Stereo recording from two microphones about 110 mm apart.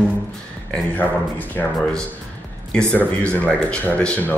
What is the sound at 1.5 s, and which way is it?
Speech, 10° left (ahead or behind).